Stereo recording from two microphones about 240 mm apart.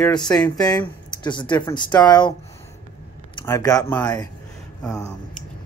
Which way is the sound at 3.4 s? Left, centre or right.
Centre.